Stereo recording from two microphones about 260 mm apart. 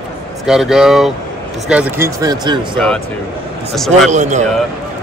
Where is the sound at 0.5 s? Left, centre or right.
Centre.